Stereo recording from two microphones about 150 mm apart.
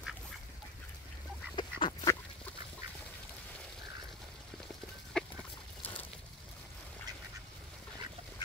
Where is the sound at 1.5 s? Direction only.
30° left (ahead or behind).